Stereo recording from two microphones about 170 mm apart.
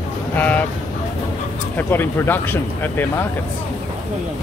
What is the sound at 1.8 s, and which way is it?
Speech, 10° left (ahead or behind).